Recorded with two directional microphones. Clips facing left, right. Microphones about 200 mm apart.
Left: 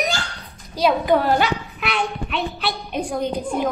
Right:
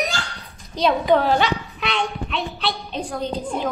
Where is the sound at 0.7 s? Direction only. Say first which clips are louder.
Even; 5° left (ahead or behind).